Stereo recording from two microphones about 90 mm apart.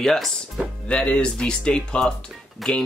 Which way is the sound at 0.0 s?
5° left (ahead or behind).